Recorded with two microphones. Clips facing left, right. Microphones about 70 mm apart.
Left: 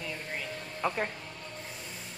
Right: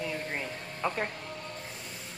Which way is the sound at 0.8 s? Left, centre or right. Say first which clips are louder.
Even; centre.